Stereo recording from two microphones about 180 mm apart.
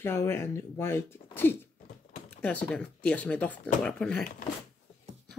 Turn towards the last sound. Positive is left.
turn(degrees=5)  # may be behind; listen again after turning